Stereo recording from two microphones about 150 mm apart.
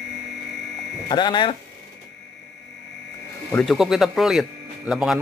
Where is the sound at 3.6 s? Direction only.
Centre (ahead or behind).